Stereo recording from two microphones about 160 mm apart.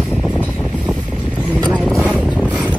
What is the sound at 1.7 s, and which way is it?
Vehicle, 5° left (ahead or behind).